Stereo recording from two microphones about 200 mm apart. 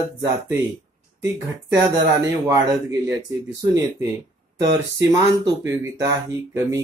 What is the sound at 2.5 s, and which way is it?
Speech, 15° right (ahead or behind).